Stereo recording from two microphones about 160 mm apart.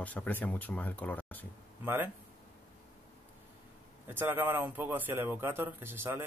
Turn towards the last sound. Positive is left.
turn(degrees=-15)  # may be behind; listen again after turning